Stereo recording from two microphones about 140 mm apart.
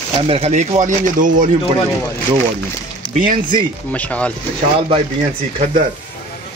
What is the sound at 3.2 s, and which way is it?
Speech, 90° right.